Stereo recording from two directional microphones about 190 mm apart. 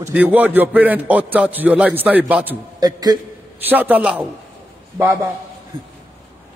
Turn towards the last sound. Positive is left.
turn(degrees=-15)  # may be behind; listen again after turning